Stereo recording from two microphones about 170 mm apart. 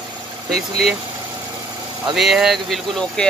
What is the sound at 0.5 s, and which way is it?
Speech, centre (ahead or behind).